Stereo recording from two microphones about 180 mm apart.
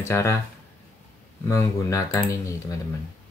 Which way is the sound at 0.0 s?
15° left (ahead or behind).